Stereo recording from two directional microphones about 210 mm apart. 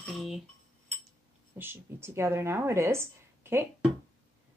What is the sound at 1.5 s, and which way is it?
Speech, 10° right (ahead or behind).